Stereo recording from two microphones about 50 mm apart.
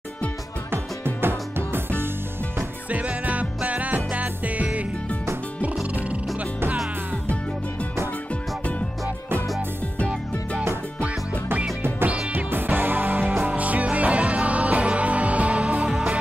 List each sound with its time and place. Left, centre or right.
0.7 s music: right
2.9 s music: right
11.0 s music: right
13.5 s music: right